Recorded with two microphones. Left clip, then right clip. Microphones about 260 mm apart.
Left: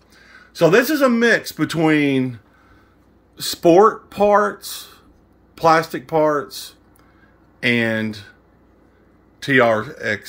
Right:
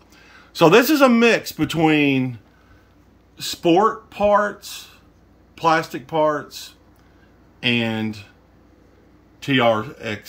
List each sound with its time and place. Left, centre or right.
0.1 s speech: centre
3.3 s speech: centre
9.4 s speech: centre